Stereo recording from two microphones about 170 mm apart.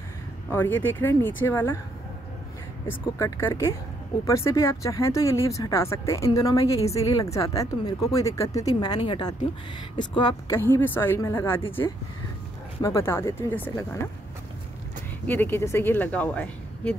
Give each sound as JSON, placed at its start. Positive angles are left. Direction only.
{"t": 0.5, "sound": "speech", "side_deg": 10}
{"t": 2.9, "sound": "speech", "side_deg": 15}
{"t": 10.5, "sound": "speech", "side_deg": 15}
{"t": 12.8, "sound": "speech", "side_deg": 15}
{"t": 15.2, "sound": "speech", "side_deg": 10}